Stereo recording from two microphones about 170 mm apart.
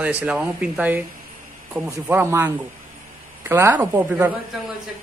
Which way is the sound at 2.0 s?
10° right (ahead or behind).